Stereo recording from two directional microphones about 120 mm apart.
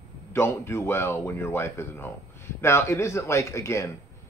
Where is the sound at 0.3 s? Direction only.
20° left (ahead or behind).